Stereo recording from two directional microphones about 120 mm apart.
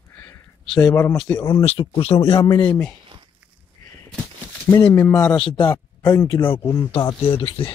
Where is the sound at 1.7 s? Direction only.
50° left (ahead or behind).